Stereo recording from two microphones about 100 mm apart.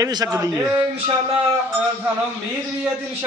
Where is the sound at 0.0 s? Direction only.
35° right (ahead or behind).